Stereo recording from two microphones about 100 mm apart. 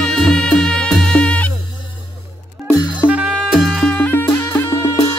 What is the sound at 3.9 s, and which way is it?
Music, 20° left (ahead or behind).